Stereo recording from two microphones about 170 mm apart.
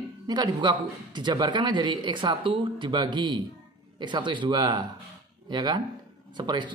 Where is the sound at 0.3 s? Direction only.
25° right (ahead or behind).